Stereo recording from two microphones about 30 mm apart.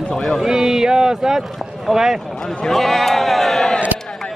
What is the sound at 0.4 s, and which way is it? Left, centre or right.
Speech, centre.